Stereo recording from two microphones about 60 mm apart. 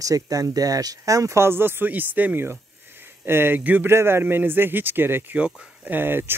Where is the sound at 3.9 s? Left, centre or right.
Right.